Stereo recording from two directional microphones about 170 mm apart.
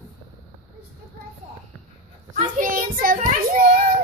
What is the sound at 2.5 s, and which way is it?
Child singing, 55° right (ahead or behind).